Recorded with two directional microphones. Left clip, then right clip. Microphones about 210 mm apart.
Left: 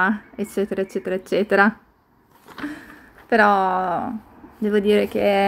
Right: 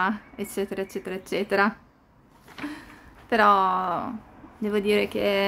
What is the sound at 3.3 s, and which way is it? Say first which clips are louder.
Speech: left 3 dB; 15° left (ahead or behind).